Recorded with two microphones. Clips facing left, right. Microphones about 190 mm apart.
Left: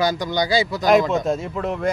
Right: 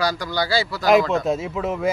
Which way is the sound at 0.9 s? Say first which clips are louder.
Even; centre (ahead or behind).